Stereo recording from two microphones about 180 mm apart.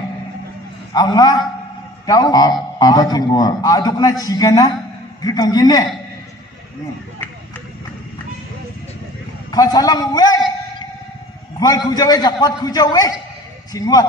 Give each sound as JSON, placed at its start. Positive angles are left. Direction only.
{"t": 0.9, "sound": "a man's voice", "side_deg": 20}
{"t": 9.5, "sound": "a man's voice", "side_deg": 20}
{"t": 11.6, "sound": "a man's voice", "side_deg": 20}